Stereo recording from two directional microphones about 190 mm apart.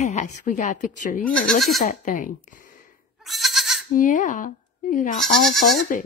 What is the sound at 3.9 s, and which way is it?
Speech, 45° left (ahead or behind).